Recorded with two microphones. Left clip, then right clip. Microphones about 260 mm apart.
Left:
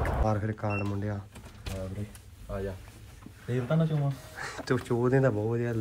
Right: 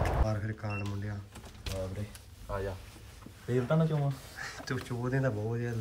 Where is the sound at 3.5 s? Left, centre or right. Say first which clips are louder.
Even; centre.